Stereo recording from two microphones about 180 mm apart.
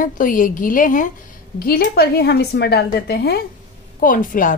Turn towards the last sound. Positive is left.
turn(degrees=50)  # may be behind; listen again after turning